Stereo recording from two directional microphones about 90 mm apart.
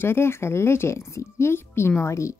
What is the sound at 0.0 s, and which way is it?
Speech, 25° left (ahead or behind).